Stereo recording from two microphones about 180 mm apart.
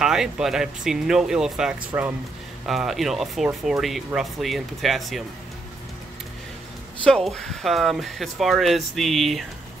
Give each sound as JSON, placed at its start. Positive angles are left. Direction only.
{"t": 0.0, "sound": "speech", "side_deg": -5}
{"t": 7.1, "sound": "speech", "side_deg": 5}